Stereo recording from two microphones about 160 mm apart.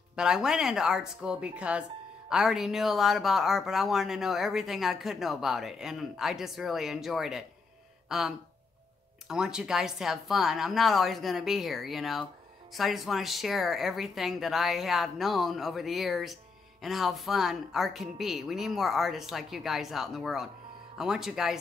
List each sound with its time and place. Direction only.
0.1 s speech: 5° right (ahead or behind)